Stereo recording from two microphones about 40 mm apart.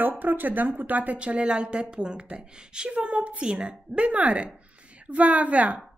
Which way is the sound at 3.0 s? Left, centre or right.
Right.